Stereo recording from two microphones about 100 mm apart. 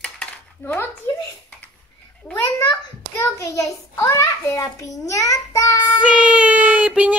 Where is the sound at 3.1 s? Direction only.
30° left (ahead or behind).